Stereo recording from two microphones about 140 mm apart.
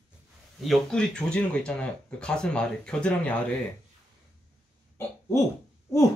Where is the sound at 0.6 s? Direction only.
5° left (ahead or behind).